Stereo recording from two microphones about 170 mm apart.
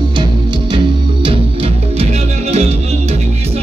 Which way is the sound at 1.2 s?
35° right (ahead or behind).